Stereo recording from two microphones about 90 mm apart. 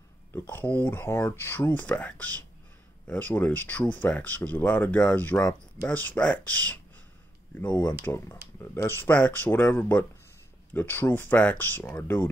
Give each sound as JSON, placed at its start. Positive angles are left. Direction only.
{"t": 0.3, "sound": "speech", "side_deg": 25}
{"t": 7.8, "sound": "speech", "side_deg": 25}